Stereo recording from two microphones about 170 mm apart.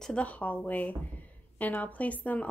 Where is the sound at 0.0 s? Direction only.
5° left (ahead or behind).